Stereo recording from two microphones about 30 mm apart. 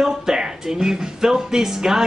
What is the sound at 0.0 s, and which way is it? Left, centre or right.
Speech, centre.